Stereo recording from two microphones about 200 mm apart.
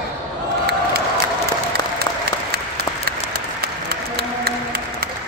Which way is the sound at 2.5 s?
50° right (ahead or behind).